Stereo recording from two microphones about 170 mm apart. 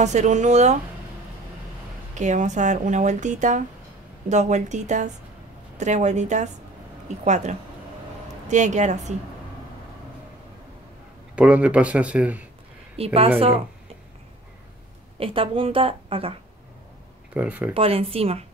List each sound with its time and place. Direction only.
0.0 s speech: 45° right (ahead or behind)
2.1 s speech: 45° right (ahead or behind)
11.3 s speech: 5° right (ahead or behind)
12.9 s a woman's voice: 35° right (ahead or behind)
15.1 s a woman's voice: 35° right (ahead or behind)
17.3 s speech: 10° right (ahead or behind)
17.7 s a woman's voice: 35° right (ahead or behind)